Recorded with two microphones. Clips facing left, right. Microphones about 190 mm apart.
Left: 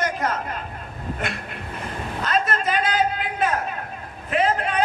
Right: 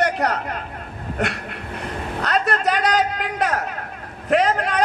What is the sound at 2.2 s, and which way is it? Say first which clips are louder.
A man's voice: right 2 dB; 70° right (ahead or behind).